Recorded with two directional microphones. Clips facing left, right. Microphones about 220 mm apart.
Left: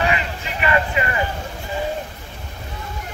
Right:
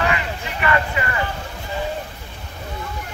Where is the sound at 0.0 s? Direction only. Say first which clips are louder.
Even; 20° left (ahead or behind).